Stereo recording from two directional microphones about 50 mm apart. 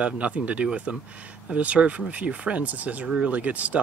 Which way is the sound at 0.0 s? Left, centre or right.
Right.